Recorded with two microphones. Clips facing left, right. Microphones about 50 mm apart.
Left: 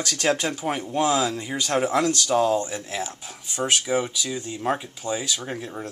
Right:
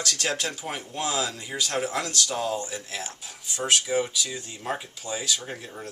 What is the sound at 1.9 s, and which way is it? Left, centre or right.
Speech, centre.